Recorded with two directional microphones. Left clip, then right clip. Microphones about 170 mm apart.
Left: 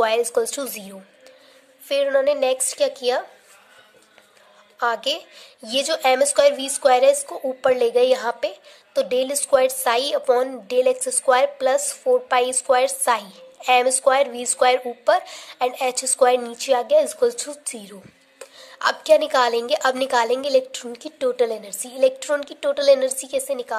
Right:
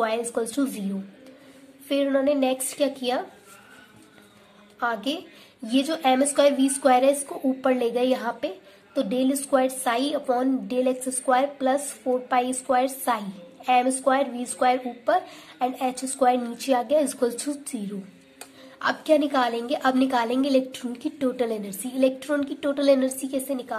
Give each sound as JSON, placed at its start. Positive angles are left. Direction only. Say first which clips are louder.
{"t": 0.0, "sound": "a woman's voice", "louder": "left 6 dB", "side_deg": 30}
{"t": 1.9, "sound": "a woman's voice", "louder": "left 4 dB", "side_deg": 30}
{"t": 4.7, "sound": "a woman's voice", "louder": "left 5 dB", "side_deg": 30}
{"t": 18.8, "sound": "a woman's voice", "louder": "left 5 dB", "side_deg": 35}